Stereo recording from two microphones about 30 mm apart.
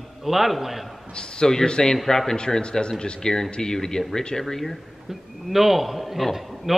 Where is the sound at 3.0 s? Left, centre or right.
Left.